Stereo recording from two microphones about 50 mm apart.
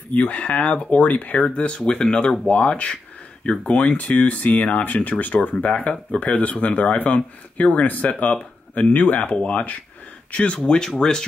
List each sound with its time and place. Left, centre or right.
0.1 s speech: left
1.4 s speech: left